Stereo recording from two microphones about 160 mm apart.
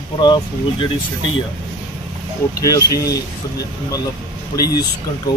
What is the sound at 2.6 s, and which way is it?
Speech, 20° left (ahead or behind).